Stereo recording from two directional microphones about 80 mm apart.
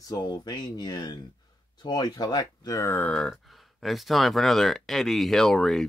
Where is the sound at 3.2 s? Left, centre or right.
Centre.